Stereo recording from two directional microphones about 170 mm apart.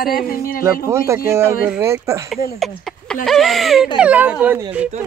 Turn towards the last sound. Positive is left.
turn(degrees=-10)  # may be behind; listen again after turning